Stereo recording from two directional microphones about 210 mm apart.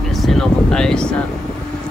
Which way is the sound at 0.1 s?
Centre (ahead or behind).